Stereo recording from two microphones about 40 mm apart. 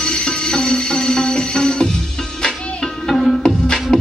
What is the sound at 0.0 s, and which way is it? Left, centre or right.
Music, centre.